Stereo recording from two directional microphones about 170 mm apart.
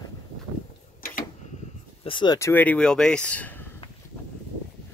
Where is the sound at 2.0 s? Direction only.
25° left (ahead or behind).